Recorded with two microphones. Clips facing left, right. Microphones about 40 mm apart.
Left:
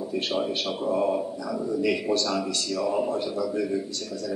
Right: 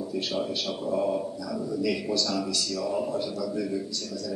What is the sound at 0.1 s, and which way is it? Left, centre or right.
A man's voice, left.